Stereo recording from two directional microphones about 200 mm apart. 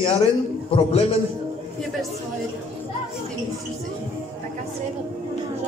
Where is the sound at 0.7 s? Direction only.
30° left (ahead or behind).